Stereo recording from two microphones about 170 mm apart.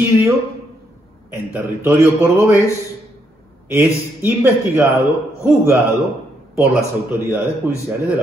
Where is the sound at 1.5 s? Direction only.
10° right (ahead or behind).